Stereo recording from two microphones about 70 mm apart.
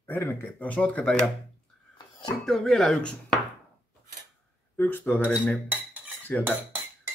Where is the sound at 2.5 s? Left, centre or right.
Centre.